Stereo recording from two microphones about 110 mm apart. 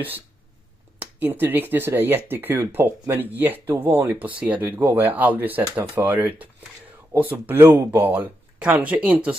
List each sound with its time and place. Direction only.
1.2 s speech: 20° right (ahead or behind)
7.1 s speech: 15° right (ahead or behind)